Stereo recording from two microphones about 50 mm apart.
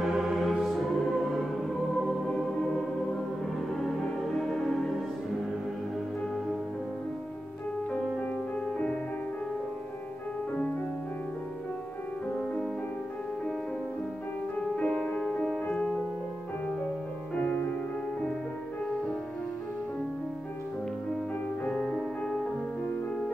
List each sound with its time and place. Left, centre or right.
0.0 s music: centre
2.2 s music: centre
4.4 s music: centre
14.8 s music: centre
21.7 s music: centre